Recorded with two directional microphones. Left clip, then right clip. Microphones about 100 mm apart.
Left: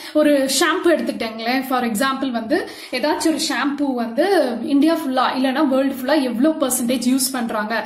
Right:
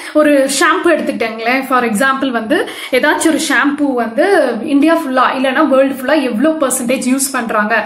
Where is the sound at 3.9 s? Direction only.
15° left (ahead or behind).